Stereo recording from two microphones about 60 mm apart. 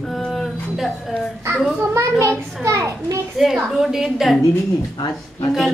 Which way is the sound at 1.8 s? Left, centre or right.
Right.